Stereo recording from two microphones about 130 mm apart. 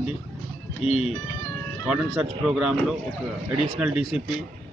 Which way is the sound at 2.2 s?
5° right (ahead or behind).